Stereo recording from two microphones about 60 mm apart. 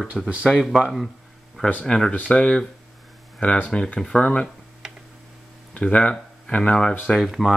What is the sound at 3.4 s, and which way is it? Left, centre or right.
Speech, left.